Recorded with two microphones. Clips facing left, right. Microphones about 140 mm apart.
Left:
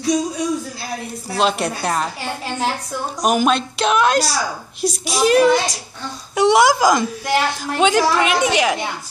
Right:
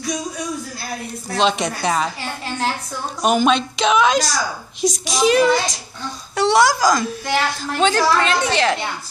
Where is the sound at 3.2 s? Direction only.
5° left (ahead or behind).